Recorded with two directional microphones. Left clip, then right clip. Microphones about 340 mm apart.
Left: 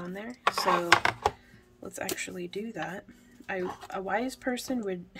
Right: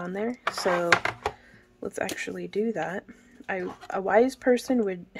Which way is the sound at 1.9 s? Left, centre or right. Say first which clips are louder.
Right 3 dB; centre.